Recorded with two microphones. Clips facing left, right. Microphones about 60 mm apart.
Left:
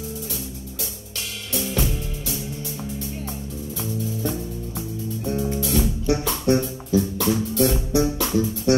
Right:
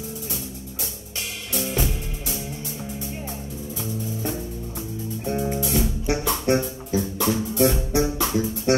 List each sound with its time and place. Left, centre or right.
1.5 s music: right
5.2 s music: right